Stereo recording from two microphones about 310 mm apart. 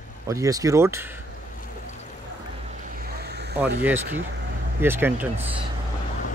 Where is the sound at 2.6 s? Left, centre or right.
Right.